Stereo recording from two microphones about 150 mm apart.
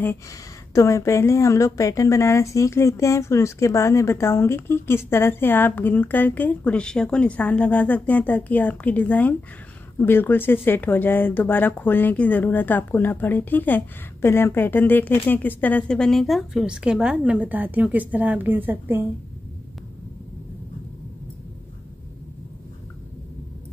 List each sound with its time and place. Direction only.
0.7 s speech: 20° left (ahead or behind); by 19.0 s 15° right (ahead or behind)